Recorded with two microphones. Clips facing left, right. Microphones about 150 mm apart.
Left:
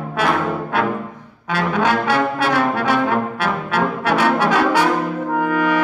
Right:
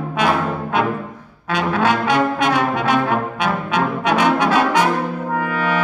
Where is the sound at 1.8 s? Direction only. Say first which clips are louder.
Right 1 dB; 15° right (ahead or behind).